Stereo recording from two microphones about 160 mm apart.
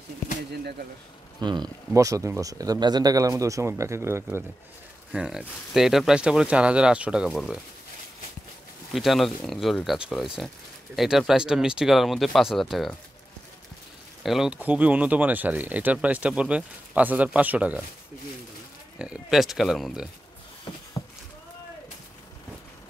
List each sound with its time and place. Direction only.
1.4 s speech: 25° right (ahead or behind)
5.1 s speech: 5° right (ahead or behind)
8.9 s speech: centre (ahead or behind)
14.2 s speech: centre (ahead or behind)
18.9 s speech: 5° right (ahead or behind)